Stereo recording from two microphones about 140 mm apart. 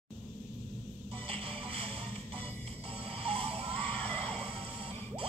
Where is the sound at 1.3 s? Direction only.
40° right (ahead or behind).